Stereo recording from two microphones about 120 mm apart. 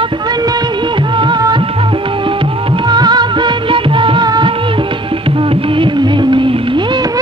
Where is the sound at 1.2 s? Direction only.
35° right (ahead or behind).